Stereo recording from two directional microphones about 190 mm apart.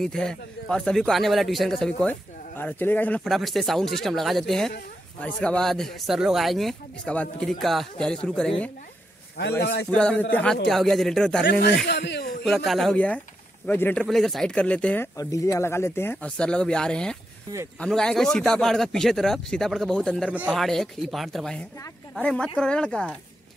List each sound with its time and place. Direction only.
0.0 s speech: 5° left (ahead or behind)
9.6 s speech: 60° left (ahead or behind)
9.8 s speech: 5° left (ahead or behind)
11.8 s speech: 60° left (ahead or behind)
12.4 s speech: centre (ahead or behind)
15.1 s speech: 15° left (ahead or behind)